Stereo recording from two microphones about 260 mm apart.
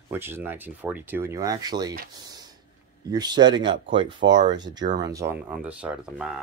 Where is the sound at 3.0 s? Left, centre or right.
Centre.